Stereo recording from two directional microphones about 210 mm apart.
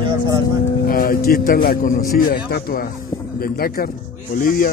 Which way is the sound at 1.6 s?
40° left (ahead or behind).